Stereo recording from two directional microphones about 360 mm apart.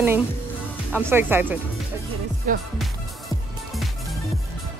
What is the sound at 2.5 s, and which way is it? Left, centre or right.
Speech, right.